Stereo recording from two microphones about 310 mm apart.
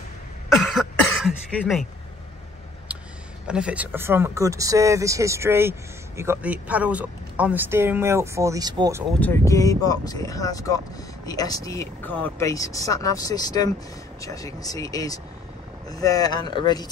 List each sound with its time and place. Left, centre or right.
0.5 s cough: centre
3.4 s speech: centre
9.2 s speech: centre